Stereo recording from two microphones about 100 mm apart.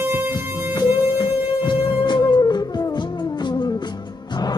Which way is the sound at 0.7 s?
50° left (ahead or behind).